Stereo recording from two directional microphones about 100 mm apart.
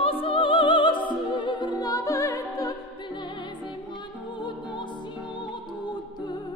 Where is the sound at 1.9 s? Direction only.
30° left (ahead or behind).